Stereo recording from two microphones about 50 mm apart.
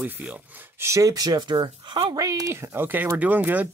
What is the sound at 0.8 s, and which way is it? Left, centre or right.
Speech, right.